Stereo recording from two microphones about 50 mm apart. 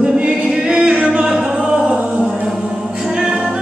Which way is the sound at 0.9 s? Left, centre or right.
Right.